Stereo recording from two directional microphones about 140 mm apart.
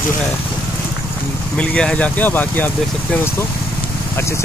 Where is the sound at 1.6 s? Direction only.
5° left (ahead or behind).